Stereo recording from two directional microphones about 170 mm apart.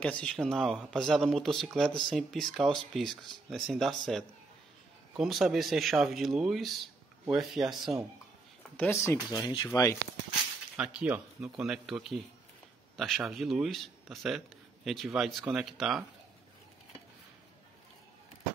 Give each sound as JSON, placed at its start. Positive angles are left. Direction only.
{"t": 0.0, "sound": "speech", "side_deg": 5}
{"t": 8.7, "sound": "speech", "side_deg": 10}
{"t": 10.8, "sound": "speech", "side_deg": -5}